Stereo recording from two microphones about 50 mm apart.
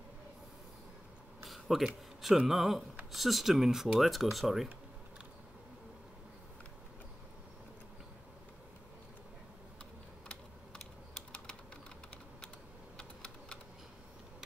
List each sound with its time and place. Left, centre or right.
1.4 s a sound: centre
2.4 s speech: centre
10.2 s typing: centre
12.9 s computer keyboard: left